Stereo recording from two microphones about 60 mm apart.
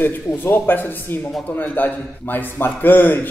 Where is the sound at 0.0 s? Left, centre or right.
Left.